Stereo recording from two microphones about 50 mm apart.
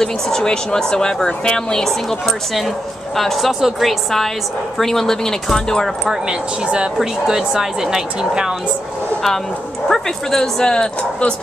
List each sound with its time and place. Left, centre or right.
0.0 s a woman's voice: centre
6.0 s speech: centre
9.8 s speech: centre